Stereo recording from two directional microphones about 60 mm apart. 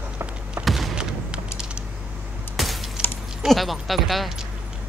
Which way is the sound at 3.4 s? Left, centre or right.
Centre.